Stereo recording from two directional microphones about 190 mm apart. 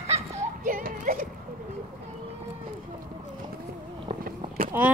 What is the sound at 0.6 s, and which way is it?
Clip-clop, 50° right (ahead or behind).